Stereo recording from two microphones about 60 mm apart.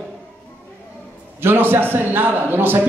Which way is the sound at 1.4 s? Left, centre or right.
Right.